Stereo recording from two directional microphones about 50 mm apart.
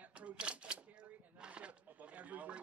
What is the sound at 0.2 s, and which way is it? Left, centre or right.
Single-lens reflex camera, right.